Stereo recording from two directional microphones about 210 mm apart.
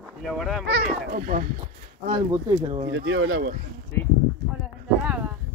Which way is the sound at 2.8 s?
65° right (ahead or behind).